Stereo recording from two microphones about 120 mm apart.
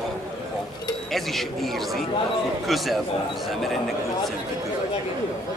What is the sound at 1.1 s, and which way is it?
Speech, centre (ahead or behind).